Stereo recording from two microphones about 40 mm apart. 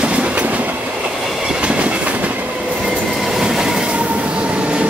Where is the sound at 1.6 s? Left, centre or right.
Right.